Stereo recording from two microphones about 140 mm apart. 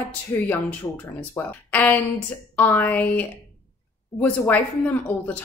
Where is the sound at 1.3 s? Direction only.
15° left (ahead or behind).